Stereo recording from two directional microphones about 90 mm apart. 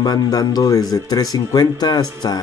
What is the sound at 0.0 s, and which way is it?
Speech, 45° left (ahead or behind).